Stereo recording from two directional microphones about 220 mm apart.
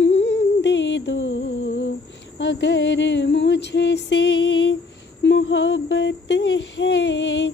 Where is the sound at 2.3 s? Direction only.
55° left (ahead or behind).